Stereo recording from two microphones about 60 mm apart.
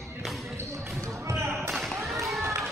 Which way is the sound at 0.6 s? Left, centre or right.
Right.